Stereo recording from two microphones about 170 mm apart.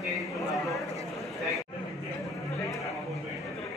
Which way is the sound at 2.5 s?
20° left (ahead or behind).